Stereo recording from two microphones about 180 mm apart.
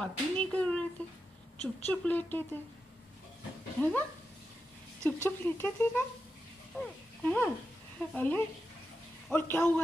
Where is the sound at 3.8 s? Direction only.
10° left (ahead or behind).